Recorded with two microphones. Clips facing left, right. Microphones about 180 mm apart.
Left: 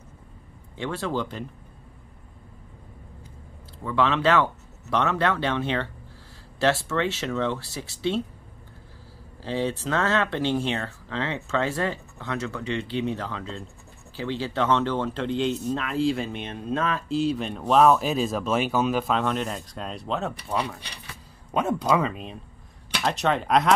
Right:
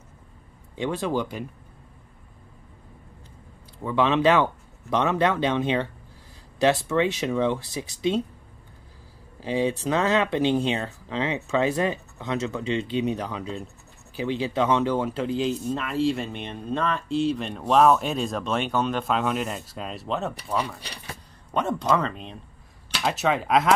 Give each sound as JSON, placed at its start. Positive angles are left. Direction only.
{"t": 0.7, "sound": "speech", "side_deg": -15}
{"t": 3.8, "sound": "speech", "side_deg": -15}
{"t": 9.4, "sound": "speech", "side_deg": -15}